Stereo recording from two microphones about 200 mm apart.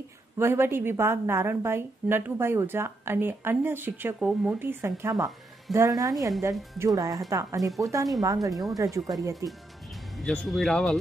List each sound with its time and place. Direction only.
0.4 s a woman's voice: 10° right (ahead or behind)
10.1 s speech: 5° left (ahead or behind)